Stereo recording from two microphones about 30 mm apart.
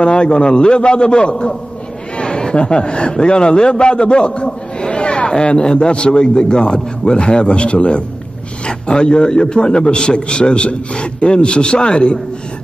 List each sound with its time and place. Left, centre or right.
0.0 s a man's voice: left